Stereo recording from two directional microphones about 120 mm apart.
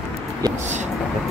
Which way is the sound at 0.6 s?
75° right (ahead or behind).